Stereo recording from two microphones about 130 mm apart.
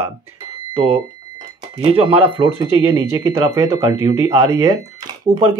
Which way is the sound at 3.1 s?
20° right (ahead or behind).